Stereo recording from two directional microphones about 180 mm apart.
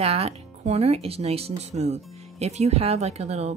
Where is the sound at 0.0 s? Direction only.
35° right (ahead or behind).